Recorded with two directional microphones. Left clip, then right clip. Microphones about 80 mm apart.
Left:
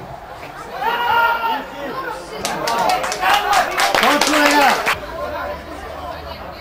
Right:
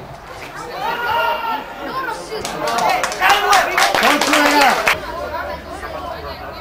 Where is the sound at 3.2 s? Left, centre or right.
Right.